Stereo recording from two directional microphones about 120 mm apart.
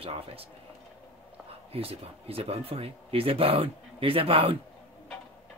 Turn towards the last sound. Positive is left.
turn(degrees=-50)  # may be behind; listen again after turning